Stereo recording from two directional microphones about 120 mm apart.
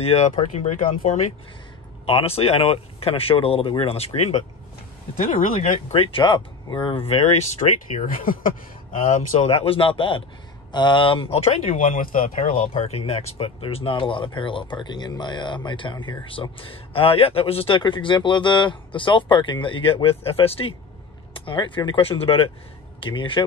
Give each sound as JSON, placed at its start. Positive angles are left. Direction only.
{"t": 0.0, "sound": "speech", "side_deg": 60}
{"t": 2.0, "sound": "speech", "side_deg": 55}
{"t": 5.5, "sound": "speech", "side_deg": 55}
{"t": 9.0, "sound": "speech", "side_deg": 70}